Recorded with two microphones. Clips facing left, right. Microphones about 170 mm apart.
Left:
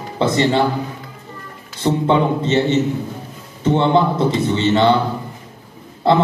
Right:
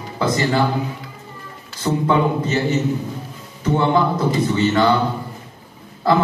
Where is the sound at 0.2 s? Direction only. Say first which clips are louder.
Left 3 dB; 25° left (ahead or behind).